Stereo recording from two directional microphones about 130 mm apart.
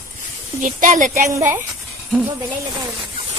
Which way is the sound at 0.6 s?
85° right.